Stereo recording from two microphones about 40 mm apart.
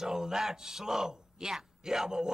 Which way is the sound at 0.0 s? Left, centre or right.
Centre.